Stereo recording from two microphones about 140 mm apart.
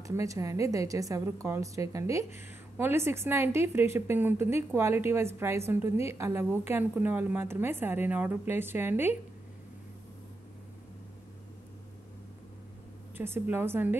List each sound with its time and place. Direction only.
0.0 s a woman's voice: 25° right (ahead or behind)
13.2 s a woman's voice: 15° right (ahead or behind)